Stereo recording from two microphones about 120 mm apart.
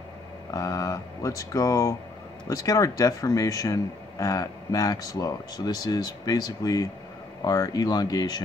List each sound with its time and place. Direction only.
0.5 s speech: 30° left (ahead or behind)